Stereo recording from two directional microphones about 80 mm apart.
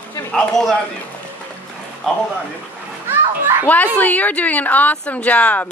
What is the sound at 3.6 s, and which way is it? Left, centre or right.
A woman's voice, left.